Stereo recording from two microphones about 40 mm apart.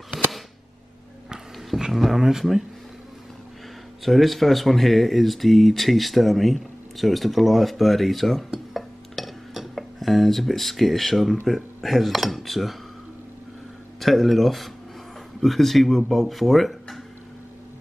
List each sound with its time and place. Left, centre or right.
1.9 s speech: centre
4.0 s speech: centre
8.7 s dishes: centre
11.4 s speech: centre
13.9 s speech: centre